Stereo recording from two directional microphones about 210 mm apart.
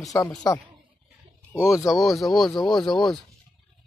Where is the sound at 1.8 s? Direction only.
Centre (ahead or behind).